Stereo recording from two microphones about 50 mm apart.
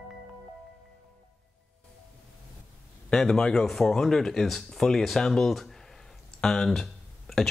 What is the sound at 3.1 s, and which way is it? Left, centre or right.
Speech, centre.